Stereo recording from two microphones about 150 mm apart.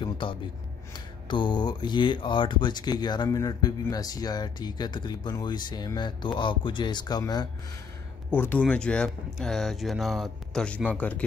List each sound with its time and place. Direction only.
0.0 s a sound: 35° left (ahead or behind)
1.3 s speech: 30° left (ahead or behind)
8.3 s speech: 10° left (ahead or behind)